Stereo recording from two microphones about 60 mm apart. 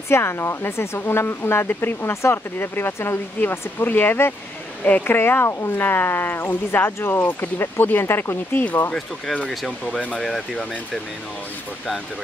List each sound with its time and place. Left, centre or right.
0.1 s speech: left
7.5 s speech: left
10.2 s speech: centre